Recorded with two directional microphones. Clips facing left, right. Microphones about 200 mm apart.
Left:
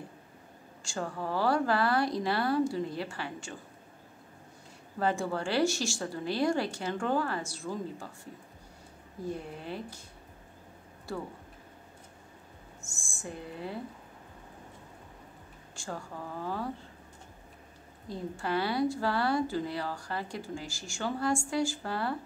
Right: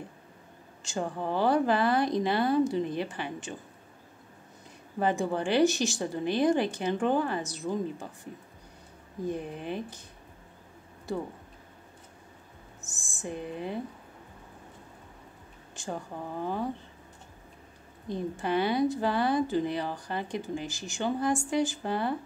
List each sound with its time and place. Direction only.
0.8 s a woman's voice: 20° right (ahead or behind)
4.9 s a woman's voice: 20° right (ahead or behind)
11.1 s a woman's voice: 20° right (ahead or behind)
13.2 s a woman's voice: 20° right (ahead or behind)
15.7 s a woman's voice: 20° right (ahead or behind)
18.0 s a woman's voice: 20° right (ahead or behind)